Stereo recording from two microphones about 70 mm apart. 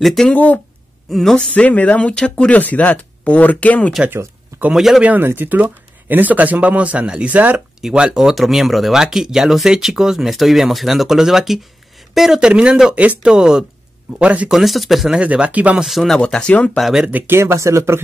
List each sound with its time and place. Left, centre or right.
0.0 s speech: centre
0.3 s speech: left
1.1 s speech: centre
1.5 s speech: left
4.7 s speech: centre
5.0 s speech: right
7.8 s speech: centre
14.5 s speech: centre
15.1 s speech: centre
15.8 s speech: centre
16.2 s speech: centre
16.8 s speech: centre
17.1 s speech: right